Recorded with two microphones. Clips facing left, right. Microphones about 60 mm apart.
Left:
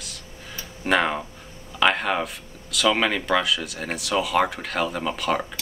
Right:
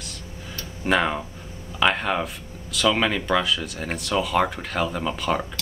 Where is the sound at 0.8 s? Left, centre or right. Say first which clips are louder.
Even; centre.